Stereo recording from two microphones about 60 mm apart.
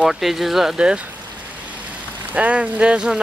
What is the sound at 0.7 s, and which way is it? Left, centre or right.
Speech, centre.